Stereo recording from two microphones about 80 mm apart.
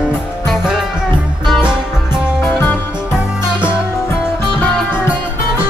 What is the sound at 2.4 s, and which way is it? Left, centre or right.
Music, left.